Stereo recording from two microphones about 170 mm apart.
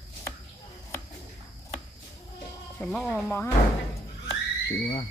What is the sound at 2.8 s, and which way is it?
Speech, 5° left (ahead or behind).